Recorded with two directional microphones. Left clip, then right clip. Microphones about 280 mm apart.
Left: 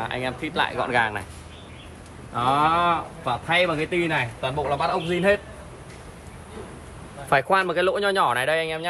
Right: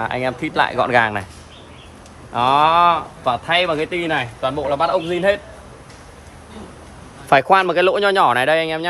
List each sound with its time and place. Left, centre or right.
0.0 s speech: right
2.3 s speech: right
7.2 s speech: right